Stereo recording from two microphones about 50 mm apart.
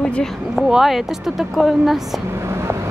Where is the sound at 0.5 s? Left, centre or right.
Centre.